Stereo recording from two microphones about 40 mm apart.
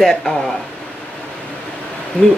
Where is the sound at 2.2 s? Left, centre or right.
Left.